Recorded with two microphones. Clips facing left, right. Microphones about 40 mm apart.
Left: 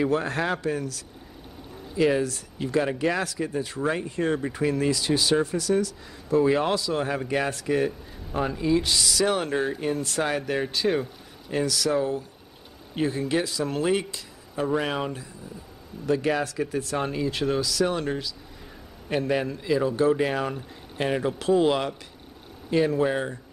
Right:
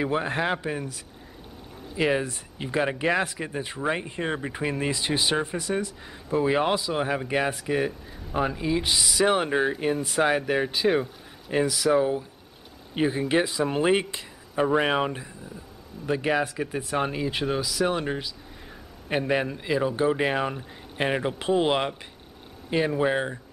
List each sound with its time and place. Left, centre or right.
0.0 s speech: centre